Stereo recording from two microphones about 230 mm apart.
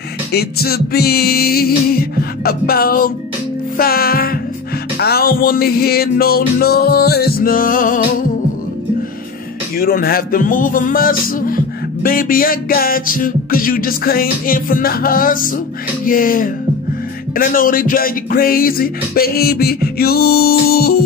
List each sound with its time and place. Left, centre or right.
0.3 s speech: left
9.8 s speech: left